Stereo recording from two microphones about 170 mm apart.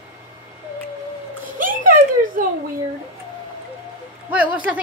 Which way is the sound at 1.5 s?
55° right (ahead or behind).